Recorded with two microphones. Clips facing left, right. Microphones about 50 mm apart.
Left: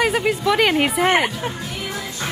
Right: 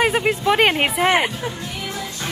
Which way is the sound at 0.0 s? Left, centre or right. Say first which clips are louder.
Right 1 dB; right.